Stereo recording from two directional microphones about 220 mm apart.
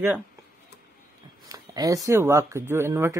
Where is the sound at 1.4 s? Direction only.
15° right (ahead or behind).